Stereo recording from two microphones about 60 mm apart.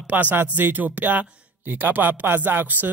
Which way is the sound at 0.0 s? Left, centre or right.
Right.